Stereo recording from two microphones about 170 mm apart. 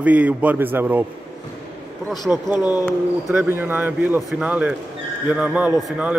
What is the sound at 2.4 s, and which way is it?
Speech, 25° left (ahead or behind).